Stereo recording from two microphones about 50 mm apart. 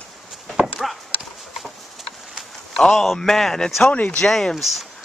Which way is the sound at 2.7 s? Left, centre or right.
Centre.